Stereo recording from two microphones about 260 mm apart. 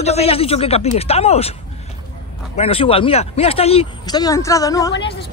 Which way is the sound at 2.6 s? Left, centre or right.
Left.